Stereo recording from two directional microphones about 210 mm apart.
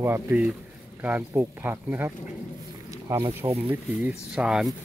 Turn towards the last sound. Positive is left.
turn(degrees=0)  # may be behind; listen again after turning